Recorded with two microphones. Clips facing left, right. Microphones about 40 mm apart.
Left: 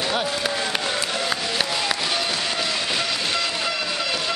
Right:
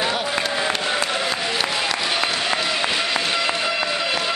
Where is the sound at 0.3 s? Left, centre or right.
Centre.